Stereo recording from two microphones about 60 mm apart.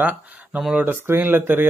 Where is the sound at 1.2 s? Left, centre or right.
Right.